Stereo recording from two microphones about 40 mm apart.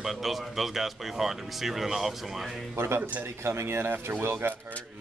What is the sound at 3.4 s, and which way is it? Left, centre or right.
Speech, right.